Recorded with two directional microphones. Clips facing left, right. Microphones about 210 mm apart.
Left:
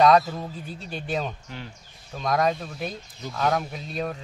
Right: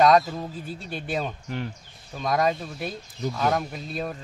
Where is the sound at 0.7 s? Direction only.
Centre (ahead or behind).